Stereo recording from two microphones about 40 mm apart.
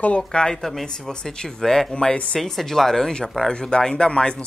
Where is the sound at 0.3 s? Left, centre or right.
Left.